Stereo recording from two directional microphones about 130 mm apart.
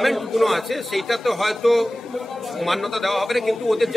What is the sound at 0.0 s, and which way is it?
A man's voice, centre (ahead or behind).